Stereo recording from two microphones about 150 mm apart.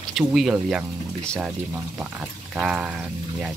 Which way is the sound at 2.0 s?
5° right (ahead or behind).